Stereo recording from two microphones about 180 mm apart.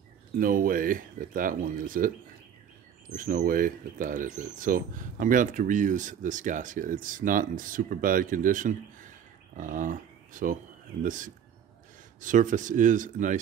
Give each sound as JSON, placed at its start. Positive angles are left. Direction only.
{"t": 0.4, "sound": "speech", "side_deg": -50}